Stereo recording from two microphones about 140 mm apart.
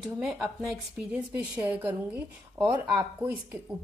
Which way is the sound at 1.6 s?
10° right (ahead or behind).